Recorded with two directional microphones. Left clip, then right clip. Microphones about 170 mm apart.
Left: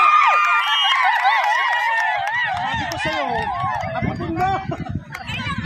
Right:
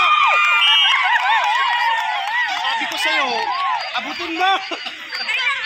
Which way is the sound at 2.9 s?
65° left (ahead or behind).